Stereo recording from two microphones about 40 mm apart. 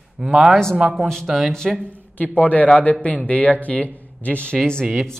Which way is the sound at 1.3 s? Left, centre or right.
Centre.